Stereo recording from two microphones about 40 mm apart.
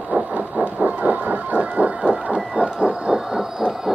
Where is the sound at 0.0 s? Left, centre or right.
Right.